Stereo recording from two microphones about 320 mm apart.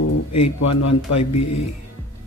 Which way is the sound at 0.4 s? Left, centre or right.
Left.